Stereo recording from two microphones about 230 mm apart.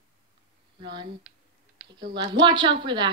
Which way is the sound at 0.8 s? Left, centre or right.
Right.